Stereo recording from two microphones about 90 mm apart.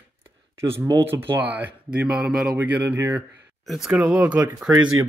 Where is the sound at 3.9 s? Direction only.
10° right (ahead or behind).